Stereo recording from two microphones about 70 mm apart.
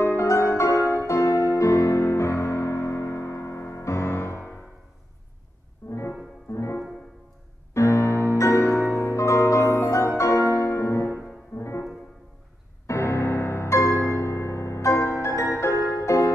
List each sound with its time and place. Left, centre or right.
0.0 s music: left
5.9 s music: left
12.8 s music: left